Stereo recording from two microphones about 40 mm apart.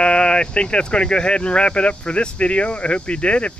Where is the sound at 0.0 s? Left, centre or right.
Left.